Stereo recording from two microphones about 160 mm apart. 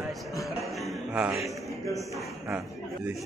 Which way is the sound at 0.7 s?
Centre (ahead or behind).